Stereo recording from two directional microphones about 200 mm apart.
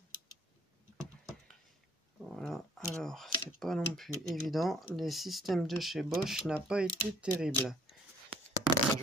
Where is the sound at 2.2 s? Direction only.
Centre (ahead or behind).